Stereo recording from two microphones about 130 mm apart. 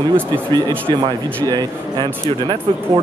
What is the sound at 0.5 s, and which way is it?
Speech, 30° right (ahead or behind).